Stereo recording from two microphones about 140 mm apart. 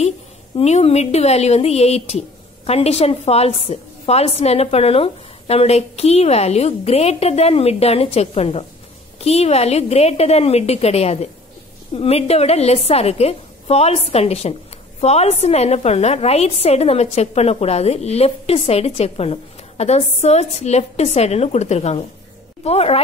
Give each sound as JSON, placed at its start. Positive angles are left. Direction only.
{"t": 0.6, "sound": "speech", "side_deg": 45}